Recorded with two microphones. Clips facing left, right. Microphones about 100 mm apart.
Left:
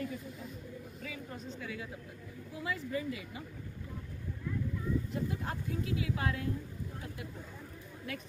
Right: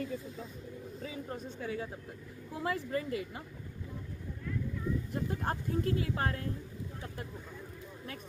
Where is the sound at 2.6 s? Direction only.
50° right (ahead or behind).